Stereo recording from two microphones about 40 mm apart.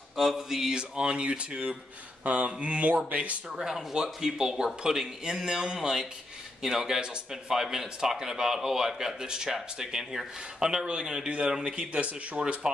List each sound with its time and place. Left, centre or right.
0.1 s speech: centre
0.7 s speech: right
3.5 s speech: centre; by 12.5 s right